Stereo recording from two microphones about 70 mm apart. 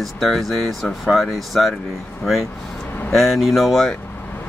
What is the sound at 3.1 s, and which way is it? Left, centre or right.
Speech, centre.